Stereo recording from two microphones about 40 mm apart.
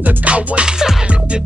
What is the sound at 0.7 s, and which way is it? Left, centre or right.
Music, centre.